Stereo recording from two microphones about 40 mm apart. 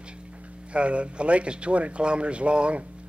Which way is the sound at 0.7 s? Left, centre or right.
Right.